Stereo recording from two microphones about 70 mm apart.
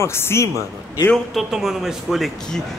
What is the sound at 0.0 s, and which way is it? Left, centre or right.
Speech, left.